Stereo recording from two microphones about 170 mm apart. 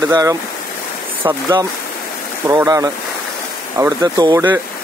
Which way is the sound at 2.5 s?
20° right (ahead or behind).